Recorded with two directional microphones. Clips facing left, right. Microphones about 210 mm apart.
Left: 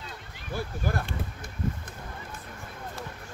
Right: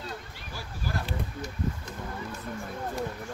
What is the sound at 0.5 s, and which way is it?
Speech, 55° left (ahead or behind).